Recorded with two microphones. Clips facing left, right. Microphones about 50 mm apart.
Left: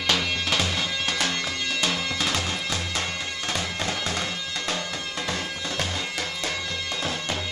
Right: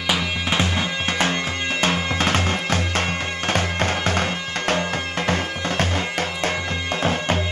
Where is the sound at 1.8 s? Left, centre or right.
Right.